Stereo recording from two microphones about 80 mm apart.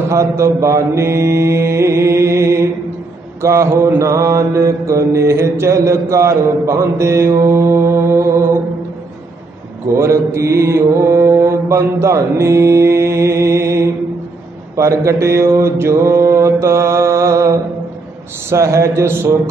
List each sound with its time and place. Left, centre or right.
0.1 s mantra: right
9.8 s mantra: right